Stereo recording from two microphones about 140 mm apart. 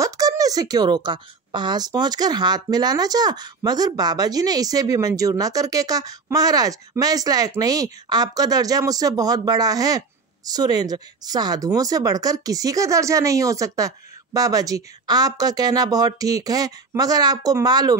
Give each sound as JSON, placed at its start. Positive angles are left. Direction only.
{"t": 0.0, "sound": "a woman's voice", "side_deg": -25}